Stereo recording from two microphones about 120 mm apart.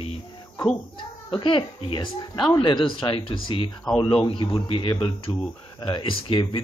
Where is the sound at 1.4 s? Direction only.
45° left (ahead or behind).